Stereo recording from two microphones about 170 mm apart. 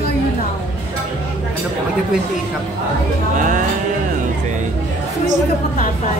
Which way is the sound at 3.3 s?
45° right (ahead or behind).